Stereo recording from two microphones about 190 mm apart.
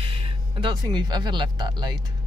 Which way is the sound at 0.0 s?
30° right (ahead or behind).